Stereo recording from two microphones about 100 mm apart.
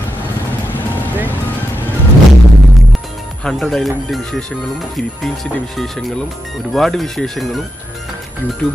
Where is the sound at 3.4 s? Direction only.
Centre (ahead or behind).